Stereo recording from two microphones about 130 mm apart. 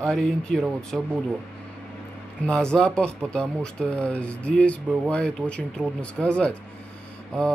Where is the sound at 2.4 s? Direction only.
5° left (ahead or behind).